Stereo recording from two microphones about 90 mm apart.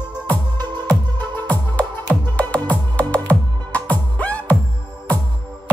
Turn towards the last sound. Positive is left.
turn(degrees=15)  # may be behind; listen again after turning